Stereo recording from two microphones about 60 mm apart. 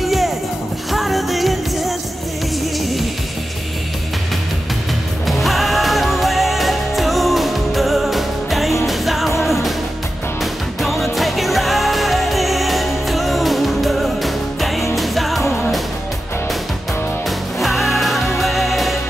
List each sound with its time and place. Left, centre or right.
0.0 s music: centre
5.2 s music: centre
17.6 s music: centre